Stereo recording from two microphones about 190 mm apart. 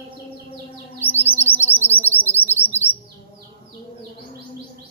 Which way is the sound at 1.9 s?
10° left (ahead or behind).